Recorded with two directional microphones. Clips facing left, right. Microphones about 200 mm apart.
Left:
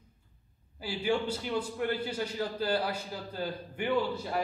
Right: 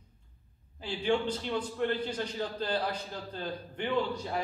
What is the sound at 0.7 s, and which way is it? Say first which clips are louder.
A man's voice: right 1 dB; 10° left (ahead or behind).